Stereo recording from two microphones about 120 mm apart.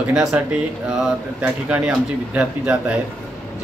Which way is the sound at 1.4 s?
10° right (ahead or behind).